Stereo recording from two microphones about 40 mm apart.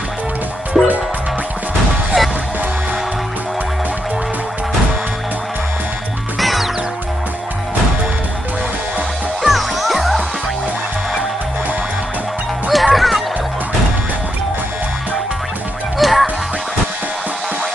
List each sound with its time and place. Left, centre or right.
0.8 s music: centre
2.1 s music: centre
6.4 s music: centre
9.4 s music: centre
12.6 s music: centre
16.0 s music: centre